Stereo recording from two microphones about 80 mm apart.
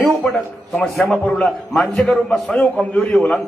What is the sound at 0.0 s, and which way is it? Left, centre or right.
A man's voice, centre.